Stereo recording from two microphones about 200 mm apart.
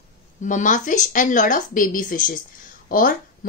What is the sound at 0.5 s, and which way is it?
A woman's voice, 40° left (ahead or behind).